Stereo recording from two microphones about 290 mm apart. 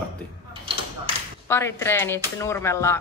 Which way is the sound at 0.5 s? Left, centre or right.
Centre.